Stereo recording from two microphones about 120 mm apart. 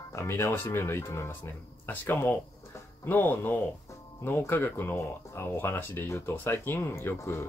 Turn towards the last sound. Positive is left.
turn(degrees=20)  # may be behind; listen again after turning